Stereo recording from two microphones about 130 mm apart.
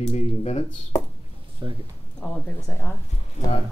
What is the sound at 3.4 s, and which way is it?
Speech, 65° left (ahead or behind).